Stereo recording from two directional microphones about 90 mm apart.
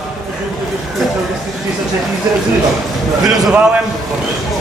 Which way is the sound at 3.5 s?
15° right (ahead or behind).